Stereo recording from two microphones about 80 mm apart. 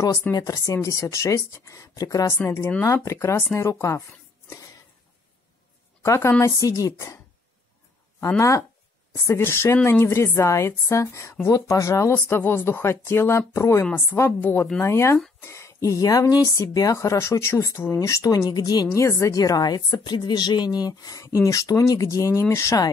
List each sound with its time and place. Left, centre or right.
0.3 s a woman's voice: left
2.4 s a woman's voice: left
6.0 s a woman's voice: left
9.1 s a woman's voice: left
18.9 s a woman's voice: left